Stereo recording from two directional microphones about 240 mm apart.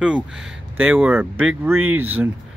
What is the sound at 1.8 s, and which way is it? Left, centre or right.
Speech, right.